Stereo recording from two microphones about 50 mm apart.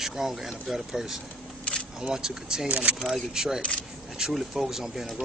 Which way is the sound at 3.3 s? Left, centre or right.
Centre.